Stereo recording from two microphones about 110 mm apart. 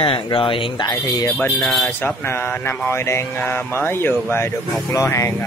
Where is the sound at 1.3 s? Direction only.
20° left (ahead or behind).